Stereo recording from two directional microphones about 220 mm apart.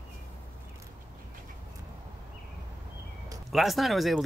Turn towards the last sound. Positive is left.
turn(degrees=0)  # may be behind; listen again after turning